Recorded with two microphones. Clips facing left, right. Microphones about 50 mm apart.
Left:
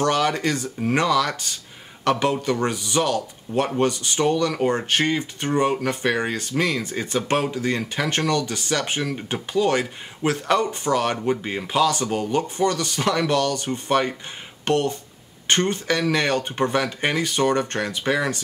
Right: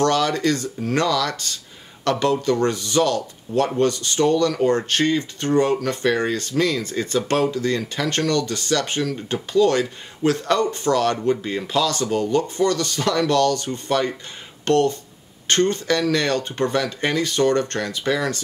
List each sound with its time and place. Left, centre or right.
0.0 s speech: centre